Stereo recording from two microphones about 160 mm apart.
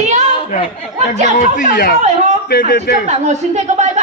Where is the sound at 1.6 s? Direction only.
65° left (ahead or behind).